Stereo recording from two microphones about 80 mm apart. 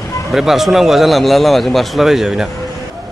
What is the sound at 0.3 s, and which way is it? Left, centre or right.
Speech, centre.